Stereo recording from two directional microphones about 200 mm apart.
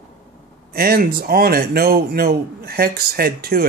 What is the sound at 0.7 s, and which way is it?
A man's voice, 50° right (ahead or behind).